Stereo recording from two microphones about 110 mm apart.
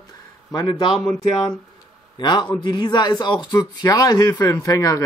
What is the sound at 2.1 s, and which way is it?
A man's voice, 45° left (ahead or behind).